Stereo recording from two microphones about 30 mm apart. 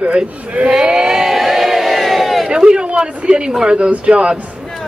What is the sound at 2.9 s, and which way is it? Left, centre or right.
Speech, right.